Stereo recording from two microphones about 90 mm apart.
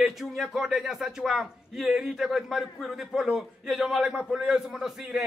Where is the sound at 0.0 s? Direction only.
Centre (ahead or behind).